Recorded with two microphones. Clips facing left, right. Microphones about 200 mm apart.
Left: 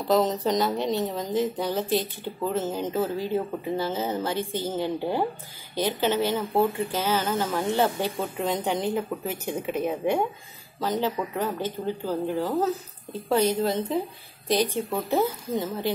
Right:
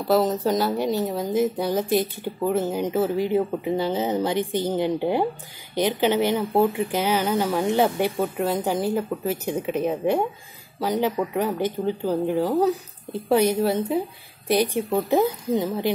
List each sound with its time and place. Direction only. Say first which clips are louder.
0.0 s speech: right 2 dB; 5° right (ahead or behind)
8.4 s speech: right 1 dB; 5° right (ahead or behind)
10.8 s speech: right 3 dB; 10° right (ahead or behind)